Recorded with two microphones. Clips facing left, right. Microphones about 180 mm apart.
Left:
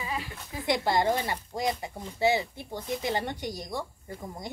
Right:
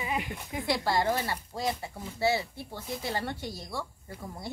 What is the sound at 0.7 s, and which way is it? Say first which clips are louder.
Speech: left 2 dB; 20° left (ahead or behind).